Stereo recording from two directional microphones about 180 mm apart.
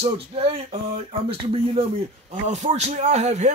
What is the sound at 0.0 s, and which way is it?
A man's voice, 30° right (ahead or behind).